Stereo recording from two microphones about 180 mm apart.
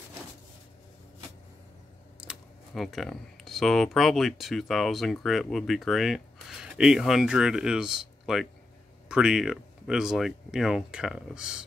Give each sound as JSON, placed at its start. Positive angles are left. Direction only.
{"t": 2.1, "sound": "speech", "side_deg": 0}